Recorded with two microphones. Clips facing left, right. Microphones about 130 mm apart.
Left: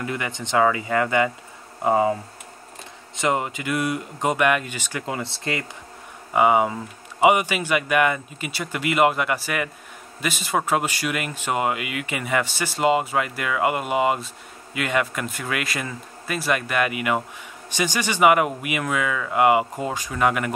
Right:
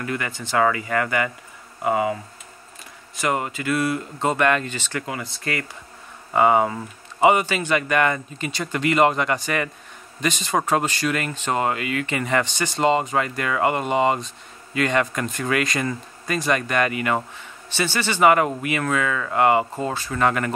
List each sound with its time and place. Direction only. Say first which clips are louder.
0.0 s speech: even; 20° left (ahead or behind)
3.2 s speech: left 1 dB; 20° left (ahead or behind)
5.0 s speech: left 1 dB; 25° left (ahead or behind)
6.3 s speech: right 1 dB; 10° left (ahead or behind)